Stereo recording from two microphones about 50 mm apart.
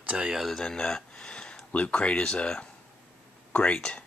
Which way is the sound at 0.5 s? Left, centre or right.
Centre.